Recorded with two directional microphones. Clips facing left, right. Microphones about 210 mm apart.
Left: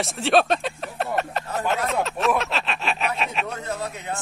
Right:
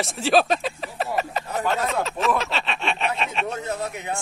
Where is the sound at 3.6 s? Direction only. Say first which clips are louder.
Right 1 dB; 20° right (ahead or behind).